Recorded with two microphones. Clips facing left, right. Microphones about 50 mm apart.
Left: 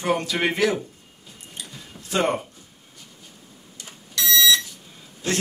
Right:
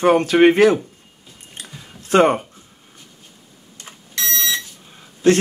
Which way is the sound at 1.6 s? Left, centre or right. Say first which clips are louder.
Right 2 dB; right.